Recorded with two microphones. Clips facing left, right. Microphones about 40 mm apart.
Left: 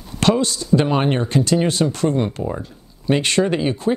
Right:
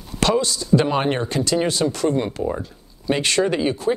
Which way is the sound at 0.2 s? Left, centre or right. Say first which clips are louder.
Left 2 dB; left.